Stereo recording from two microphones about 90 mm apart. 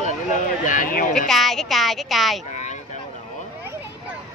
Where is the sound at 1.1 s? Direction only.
5° left (ahead or behind).